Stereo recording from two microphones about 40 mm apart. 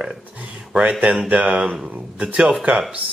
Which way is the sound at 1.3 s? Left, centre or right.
Right.